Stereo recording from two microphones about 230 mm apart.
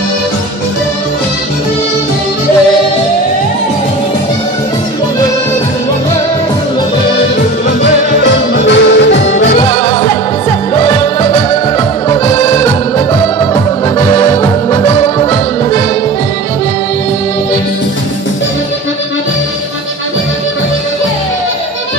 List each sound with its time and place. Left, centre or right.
8.2 s music: left
9.6 s music: left
14.4 s music: centre